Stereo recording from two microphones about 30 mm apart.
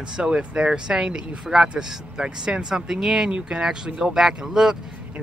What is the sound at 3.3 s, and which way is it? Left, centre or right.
Speech, right.